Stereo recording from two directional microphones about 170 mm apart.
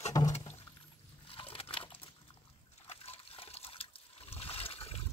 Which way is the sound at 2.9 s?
35° left (ahead or behind).